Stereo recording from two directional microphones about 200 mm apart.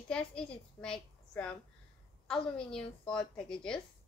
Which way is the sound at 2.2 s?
5° left (ahead or behind).